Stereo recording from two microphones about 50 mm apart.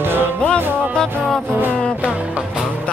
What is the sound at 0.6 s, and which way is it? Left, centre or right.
Music, right.